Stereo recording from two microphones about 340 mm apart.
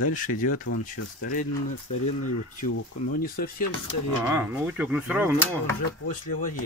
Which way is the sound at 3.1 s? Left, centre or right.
Left.